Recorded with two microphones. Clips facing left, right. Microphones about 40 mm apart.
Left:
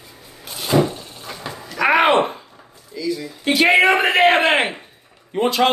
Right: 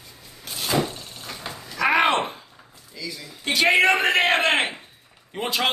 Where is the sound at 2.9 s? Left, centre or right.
Centre.